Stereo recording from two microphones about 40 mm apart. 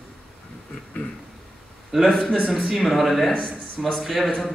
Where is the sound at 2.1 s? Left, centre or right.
Centre.